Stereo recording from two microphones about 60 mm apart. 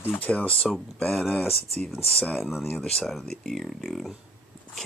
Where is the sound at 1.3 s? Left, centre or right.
Centre.